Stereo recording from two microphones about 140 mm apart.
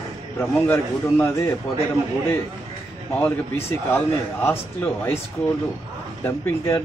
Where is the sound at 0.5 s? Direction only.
15° left (ahead or behind).